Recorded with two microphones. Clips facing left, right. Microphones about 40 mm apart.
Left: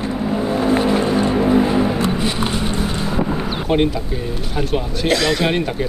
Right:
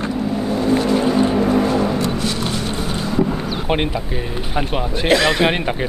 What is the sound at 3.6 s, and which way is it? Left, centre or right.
Speech, right.